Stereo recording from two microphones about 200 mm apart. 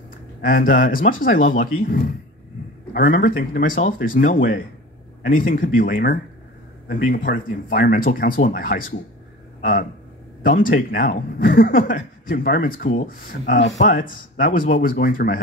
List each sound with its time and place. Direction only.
0.4 s speech: 45° left (ahead or behind)
10.4 s speech: 45° left (ahead or behind)